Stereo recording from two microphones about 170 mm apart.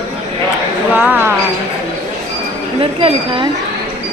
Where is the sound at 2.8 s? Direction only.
30° right (ahead or behind).